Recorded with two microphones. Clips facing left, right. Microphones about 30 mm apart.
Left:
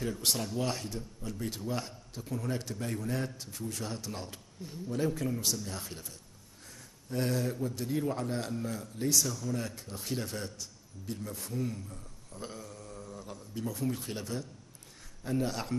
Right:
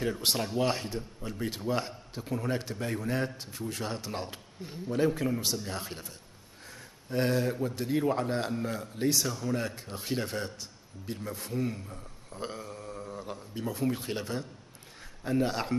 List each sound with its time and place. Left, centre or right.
0.0 s a man's voice: right